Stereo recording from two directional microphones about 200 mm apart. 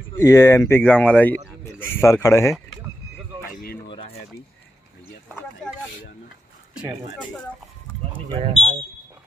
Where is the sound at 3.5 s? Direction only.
45° left (ahead or behind).